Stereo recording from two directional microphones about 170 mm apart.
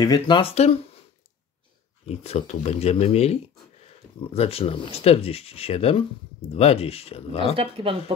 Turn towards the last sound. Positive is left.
turn(degrees=-35)  # may be behind; listen again after turning